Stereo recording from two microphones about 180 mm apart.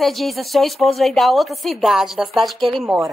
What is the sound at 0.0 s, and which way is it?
A woman's voice, centre (ahead or behind).